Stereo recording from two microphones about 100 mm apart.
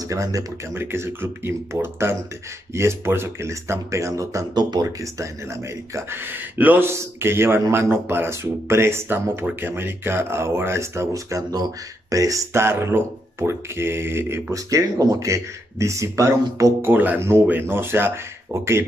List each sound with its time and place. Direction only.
0.1 s speech: 35° right (ahead or behind)
0.7 s speech: 25° right (ahead or behind)
4.6 s speech: 45° right (ahead or behind)
4.8 s speech: 30° right (ahead or behind)
16.9 s speech: 15° right (ahead or behind)